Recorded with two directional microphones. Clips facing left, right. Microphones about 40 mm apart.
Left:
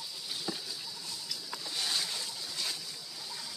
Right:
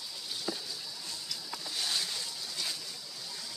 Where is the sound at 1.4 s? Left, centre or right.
Centre.